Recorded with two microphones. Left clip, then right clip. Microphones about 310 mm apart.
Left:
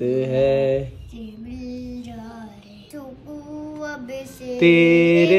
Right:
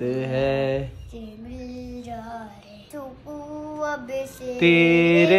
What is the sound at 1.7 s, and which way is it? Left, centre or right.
Music, right.